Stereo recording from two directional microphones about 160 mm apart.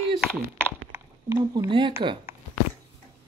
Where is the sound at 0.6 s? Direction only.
15° right (ahead or behind).